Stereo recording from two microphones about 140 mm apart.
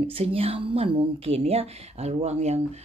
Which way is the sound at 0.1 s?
45° right (ahead or behind).